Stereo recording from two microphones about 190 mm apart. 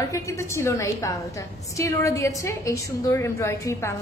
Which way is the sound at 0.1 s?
15° left (ahead or behind).